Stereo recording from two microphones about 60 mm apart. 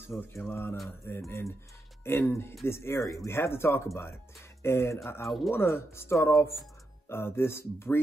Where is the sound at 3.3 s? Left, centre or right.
Left.